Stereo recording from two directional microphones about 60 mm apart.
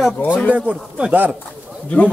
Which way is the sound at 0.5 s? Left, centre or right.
Centre.